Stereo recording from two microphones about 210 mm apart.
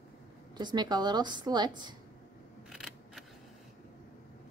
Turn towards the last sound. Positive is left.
turn(degrees=0)  # may be behind; listen again after turning